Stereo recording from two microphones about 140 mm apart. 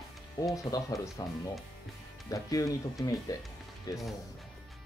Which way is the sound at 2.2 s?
25° left (ahead or behind).